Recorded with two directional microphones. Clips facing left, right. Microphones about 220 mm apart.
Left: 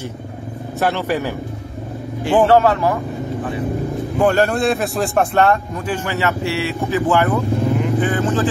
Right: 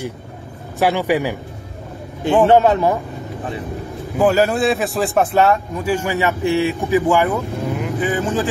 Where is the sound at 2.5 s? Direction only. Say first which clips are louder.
Right 1 dB; 20° right (ahead or behind).